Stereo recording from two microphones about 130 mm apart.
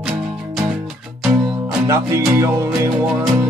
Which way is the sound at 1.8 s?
20° right (ahead or behind).